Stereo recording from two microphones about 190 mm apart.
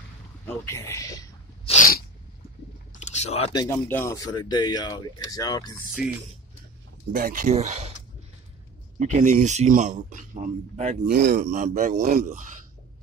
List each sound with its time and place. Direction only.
0.5 s speech: 15° left (ahead or behind)
1.7 s sneeze: 45° left (ahead or behind)
2.9 s chewing: 35° left (ahead or behind)
3.5 s speech: 15° left (ahead or behind)
6.0 s speech: 5° right (ahead or behind)
7.1 s speech: 50° right (ahead or behind)
7.5 s a man's voice: 35° right (ahead or behind)
9.0 s a man's voice: 40° right (ahead or behind)